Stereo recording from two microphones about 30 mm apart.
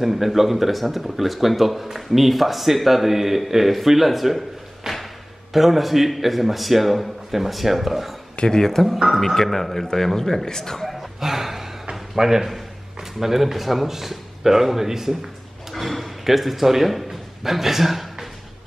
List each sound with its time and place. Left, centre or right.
0.0 s speech: centre
4.9 s a sound: centre
5.5 s speech: centre
8.5 s speech: centre
8.8 s speech: centre
9.2 s speech: centre
10.9 s dog: centre
11.9 s a sound: centre
13.2 s a man's voice: centre
15.7 s a sound: centre